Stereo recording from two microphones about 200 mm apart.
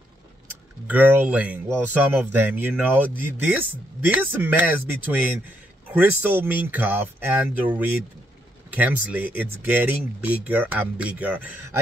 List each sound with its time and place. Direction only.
0.8 s speech: 10° right (ahead or behind)
5.9 s speech: 10° right (ahead or behind)